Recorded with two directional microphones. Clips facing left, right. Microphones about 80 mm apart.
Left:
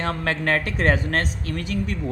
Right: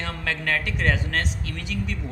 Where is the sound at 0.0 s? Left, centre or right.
Left.